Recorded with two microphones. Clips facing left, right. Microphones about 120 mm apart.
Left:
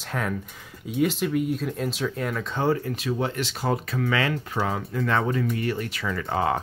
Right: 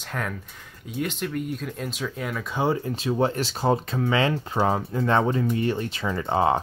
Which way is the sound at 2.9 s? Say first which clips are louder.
Right 3 dB; 30° right (ahead or behind).